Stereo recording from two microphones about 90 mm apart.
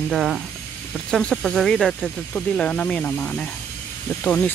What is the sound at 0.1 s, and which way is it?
Speech, centre (ahead or behind).